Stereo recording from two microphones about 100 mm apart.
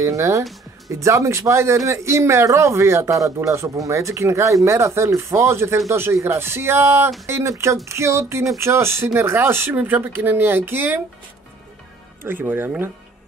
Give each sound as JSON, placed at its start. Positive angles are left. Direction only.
{"t": 0.0, "sound": "a man's voice", "side_deg": -30}
{"t": 12.2, "sound": "a man's voice", "side_deg": -20}